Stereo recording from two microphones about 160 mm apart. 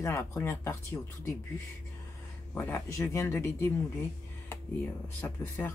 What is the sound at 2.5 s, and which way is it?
Speech, 15° left (ahead or behind).